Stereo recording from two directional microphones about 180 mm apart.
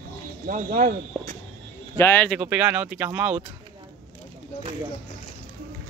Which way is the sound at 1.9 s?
10° left (ahead or behind).